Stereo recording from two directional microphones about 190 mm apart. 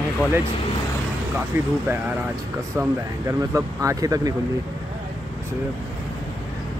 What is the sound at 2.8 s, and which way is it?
Speech, 15° right (ahead or behind).